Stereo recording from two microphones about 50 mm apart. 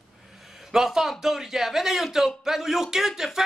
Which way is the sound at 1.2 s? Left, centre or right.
Centre.